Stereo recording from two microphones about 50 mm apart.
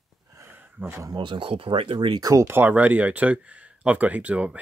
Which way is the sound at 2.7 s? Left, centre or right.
Right.